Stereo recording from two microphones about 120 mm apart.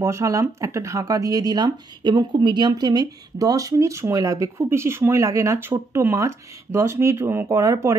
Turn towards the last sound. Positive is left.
turn(degrees=-25)  # may be behind; listen again after turning